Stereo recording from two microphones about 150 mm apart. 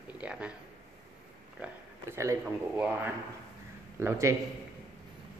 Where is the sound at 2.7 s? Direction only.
10° right (ahead or behind).